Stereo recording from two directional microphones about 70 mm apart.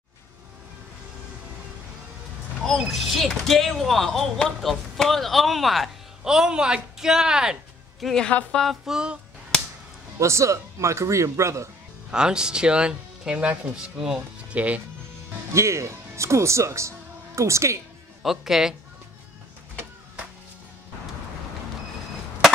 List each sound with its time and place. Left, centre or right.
2.9 s speech: centre
8.0 s speech: centre
8.3 s speech: centre
8.5 s speech: centre
10.1 s speech: right
12.1 s speech: centre
15.5 s speech: right
18.2 s speech: centre